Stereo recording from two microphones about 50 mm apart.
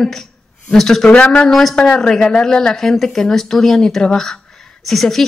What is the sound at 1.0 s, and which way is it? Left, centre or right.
Speech, left.